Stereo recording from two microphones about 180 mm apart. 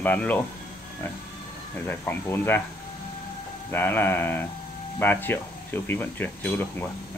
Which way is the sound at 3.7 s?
10° left (ahead or behind).